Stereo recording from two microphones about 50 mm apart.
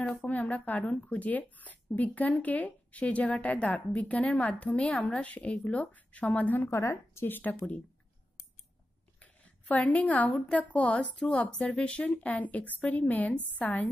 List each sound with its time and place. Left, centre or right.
0.0 s a woman's voice: centre
0.3 s a woman's voice: left
6.7 s a woman's voice: left
7.2 s speech: left
9.2 s a sound: left
10.5 s a woman's voice: left